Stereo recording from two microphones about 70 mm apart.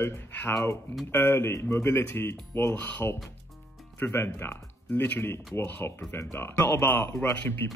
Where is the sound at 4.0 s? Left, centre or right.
Left.